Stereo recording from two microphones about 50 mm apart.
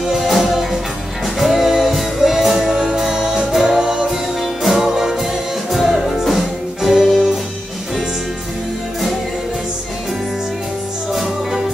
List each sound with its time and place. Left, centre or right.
0.1 s music: centre